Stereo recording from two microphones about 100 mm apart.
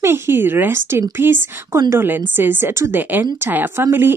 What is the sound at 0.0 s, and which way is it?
A woman's voice, 25° right (ahead or behind).